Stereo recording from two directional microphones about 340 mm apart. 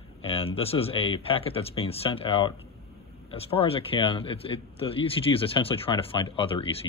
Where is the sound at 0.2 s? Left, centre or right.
Centre.